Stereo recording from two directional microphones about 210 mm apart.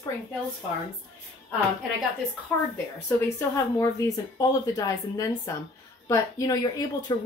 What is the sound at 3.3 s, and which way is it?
A woman's voice, 15° left (ahead or behind).